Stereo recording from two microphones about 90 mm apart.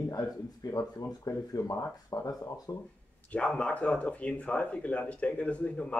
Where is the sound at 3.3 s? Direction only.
15° left (ahead or behind).